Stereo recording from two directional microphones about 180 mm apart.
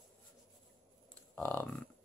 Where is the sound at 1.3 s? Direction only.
10° left (ahead or behind).